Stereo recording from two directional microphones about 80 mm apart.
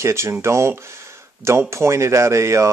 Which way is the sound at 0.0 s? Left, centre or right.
Right.